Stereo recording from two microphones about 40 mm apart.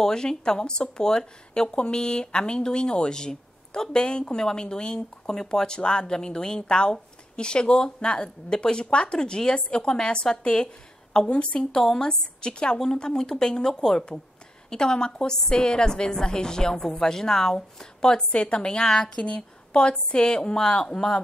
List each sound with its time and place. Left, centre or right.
0.0 s a woman's voice: centre
18.3 s speech: left